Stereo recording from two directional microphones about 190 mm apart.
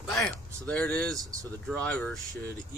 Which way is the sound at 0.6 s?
5° left (ahead or behind).